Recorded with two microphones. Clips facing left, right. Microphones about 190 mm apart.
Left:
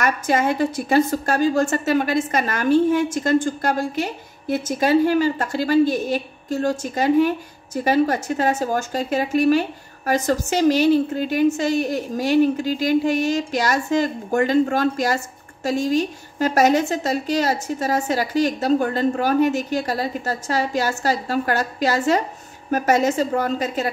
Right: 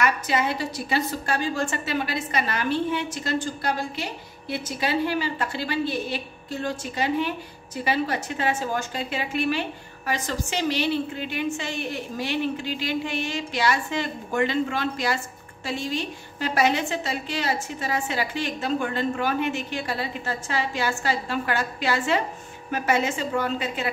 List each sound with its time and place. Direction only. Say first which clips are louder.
0.0 s a woman's voice: left 4 dB; 45° left (ahead or behind)